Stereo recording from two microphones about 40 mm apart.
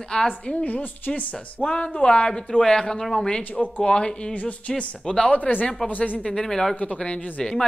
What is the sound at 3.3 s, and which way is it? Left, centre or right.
Speech, centre.